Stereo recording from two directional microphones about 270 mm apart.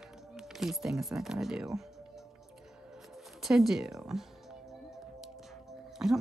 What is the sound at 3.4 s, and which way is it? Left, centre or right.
Speech, centre.